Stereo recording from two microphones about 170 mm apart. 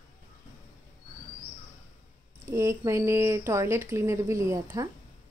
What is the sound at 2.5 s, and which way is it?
Speech, 20° right (ahead or behind).